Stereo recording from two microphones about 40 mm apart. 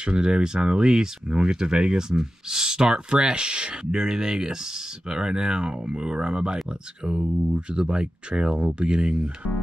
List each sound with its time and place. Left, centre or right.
0.0 s speech: right
7.2 s speech: right
7.5 s speech: right